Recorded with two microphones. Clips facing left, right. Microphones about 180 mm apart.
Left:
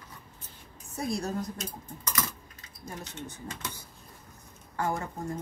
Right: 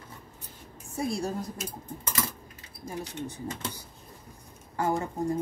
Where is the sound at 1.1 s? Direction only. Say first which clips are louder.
Left 1 dB; 30° right (ahead or behind).